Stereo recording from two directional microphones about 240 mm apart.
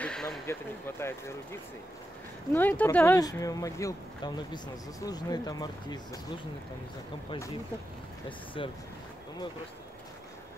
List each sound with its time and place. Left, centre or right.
0.0 s speech: centre
7.2 s speech: centre
8.6 s speech: left